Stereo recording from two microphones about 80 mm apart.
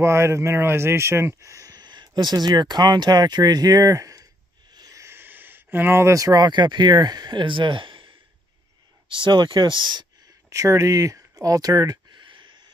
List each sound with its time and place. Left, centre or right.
0.0 s speech: right
4.9 s a sound: right
6.1 s speech: right
9.1 s speech: right
10.5 s speech: right
12.1 s a sound: right